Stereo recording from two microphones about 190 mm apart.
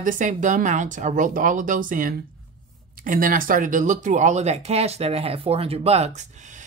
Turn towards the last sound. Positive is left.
turn(degrees=-40)  # may be behind; listen again after turning